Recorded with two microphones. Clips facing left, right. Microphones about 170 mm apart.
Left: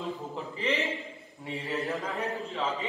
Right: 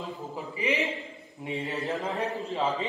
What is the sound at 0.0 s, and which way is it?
A man's voice, centre (ahead or behind).